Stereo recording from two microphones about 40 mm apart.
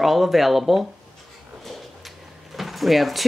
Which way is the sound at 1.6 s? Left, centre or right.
Centre.